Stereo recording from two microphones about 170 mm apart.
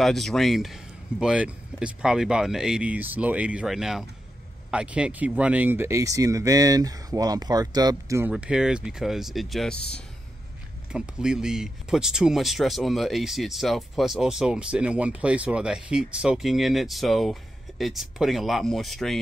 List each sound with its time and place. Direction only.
0.0 s speech: centre (ahead or behind); by 8.3 s 20° right (ahead or behind)
8.3 s speech: 5° right (ahead or behind)
10.9 s speech: 5° right (ahead or behind)